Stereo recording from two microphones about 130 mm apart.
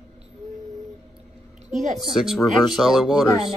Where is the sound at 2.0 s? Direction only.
5° right (ahead or behind).